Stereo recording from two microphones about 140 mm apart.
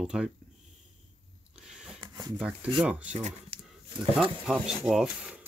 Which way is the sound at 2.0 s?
25° right (ahead or behind).